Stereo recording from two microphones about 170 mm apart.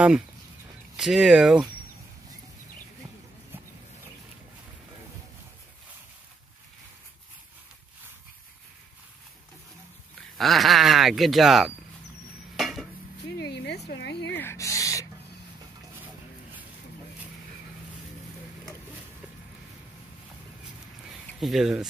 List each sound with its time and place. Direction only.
0.9 s speech: 5° right (ahead or behind)
10.3 s speech: centre (ahead or behind)
12.5 s dishes: centre (ahead or behind)
13.4 s a sound: 75° left (ahead or behind)
14.3 s gasp: 15° left (ahead or behind)
21.3 s speech: centre (ahead or behind)